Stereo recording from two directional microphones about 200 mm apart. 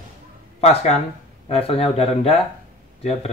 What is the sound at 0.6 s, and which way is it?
Speech, 30° left (ahead or behind).